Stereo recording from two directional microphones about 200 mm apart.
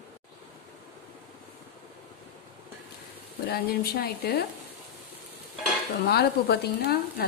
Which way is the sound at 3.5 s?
50° left (ahead or behind).